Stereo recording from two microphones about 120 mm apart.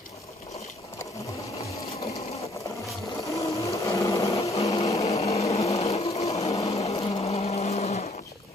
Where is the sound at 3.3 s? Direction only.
25° left (ahead or behind).